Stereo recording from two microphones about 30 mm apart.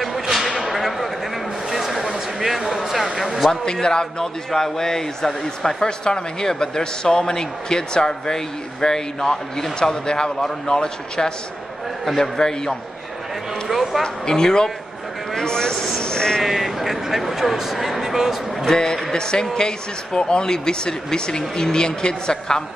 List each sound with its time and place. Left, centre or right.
0.0 s whip: centre
1.7 s a sound: centre
3.8 s a man's voice: left
4.5 s a man's voice: centre
5.9 s a man's voice: left
13.7 s speech: centre
14.0 s a man's voice: left
16.0 s bleat: left
16.4 s speech: centre
18.7 s a man's voice: left